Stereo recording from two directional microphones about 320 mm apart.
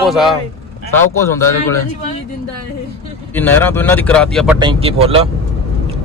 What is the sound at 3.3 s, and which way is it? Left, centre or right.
Speech, centre.